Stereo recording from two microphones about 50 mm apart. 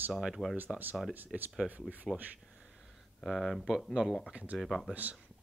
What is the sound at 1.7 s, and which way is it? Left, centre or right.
Speech, right.